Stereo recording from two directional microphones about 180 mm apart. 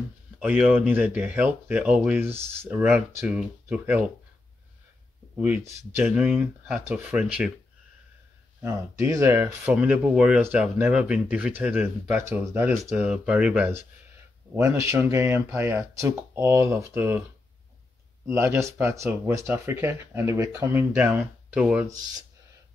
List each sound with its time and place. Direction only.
0.4 s speech: 5° right (ahead or behind)
5.4 s speech: 10° right (ahead or behind)
8.6 s speech: 15° right (ahead or behind)
9.7 s speech: 5° right (ahead or behind)
18.2 s speech: 15° right (ahead or behind)